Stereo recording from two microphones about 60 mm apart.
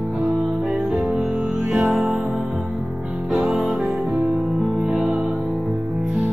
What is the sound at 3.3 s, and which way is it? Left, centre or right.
Music, centre.